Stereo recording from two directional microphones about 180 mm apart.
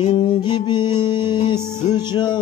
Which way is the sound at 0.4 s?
25° left (ahead or behind).